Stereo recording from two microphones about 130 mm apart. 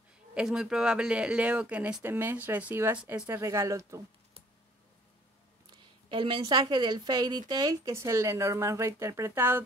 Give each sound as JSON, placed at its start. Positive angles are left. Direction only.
{"t": 0.3, "sound": "a woman's voice", "side_deg": -5}
{"t": 6.0, "sound": "a woman's voice", "side_deg": -40}